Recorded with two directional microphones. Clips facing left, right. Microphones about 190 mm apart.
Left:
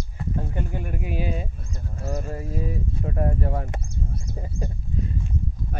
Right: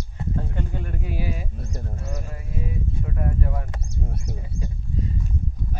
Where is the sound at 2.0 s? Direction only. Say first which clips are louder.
Left 5 dB; 35° left (ahead or behind).